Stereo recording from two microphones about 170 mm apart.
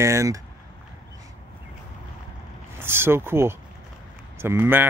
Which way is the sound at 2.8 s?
15° right (ahead or behind).